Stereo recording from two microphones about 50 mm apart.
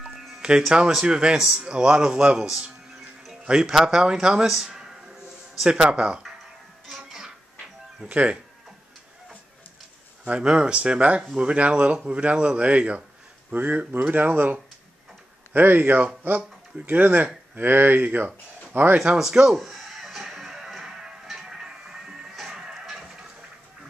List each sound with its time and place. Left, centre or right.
0.4 s speech: centre
7.1 s music: centre
8.1 s speech: right
10.2 s speech: right
13.5 s speech: right
19.1 s speech: centre
19.5 s music: centre